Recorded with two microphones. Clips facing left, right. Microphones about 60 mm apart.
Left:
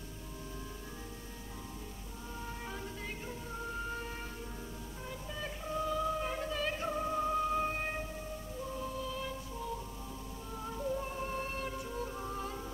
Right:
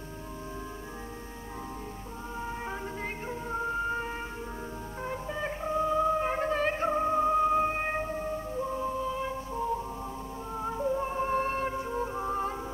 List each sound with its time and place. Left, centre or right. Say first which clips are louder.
2.4 s music: right 7 dB; right